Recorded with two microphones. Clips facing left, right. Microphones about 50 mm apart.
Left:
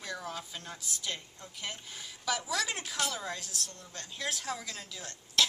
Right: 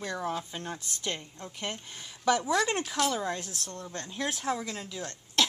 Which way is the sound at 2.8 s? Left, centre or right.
Centre.